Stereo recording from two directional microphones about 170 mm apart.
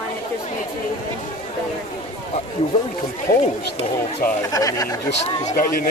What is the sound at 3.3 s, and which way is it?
Speech, 60° left (ahead or behind).